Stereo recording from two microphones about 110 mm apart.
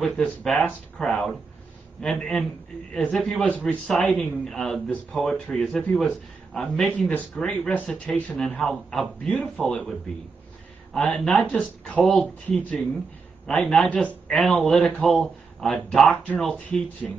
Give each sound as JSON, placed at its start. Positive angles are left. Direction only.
{"t": 0.0, "sound": "speech", "side_deg": 5}
{"t": 12.4, "sound": "speech", "side_deg": 15}